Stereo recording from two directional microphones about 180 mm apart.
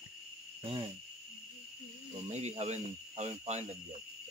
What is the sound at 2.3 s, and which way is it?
Speech, 35° right (ahead or behind).